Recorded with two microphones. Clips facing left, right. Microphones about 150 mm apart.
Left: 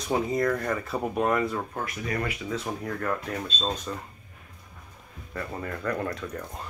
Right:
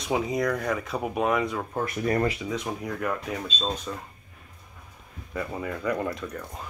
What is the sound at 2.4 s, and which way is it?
Speech, 10° right (ahead or behind).